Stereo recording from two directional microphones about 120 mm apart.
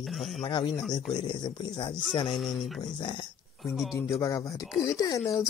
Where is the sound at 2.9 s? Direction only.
40° left (ahead or behind).